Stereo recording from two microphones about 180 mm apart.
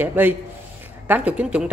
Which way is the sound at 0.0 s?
10° right (ahead or behind).